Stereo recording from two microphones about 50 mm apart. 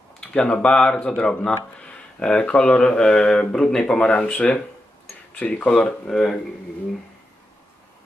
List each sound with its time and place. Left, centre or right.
0.2 s speech: centre
4.1 s speech: left
5.9 s speech: centre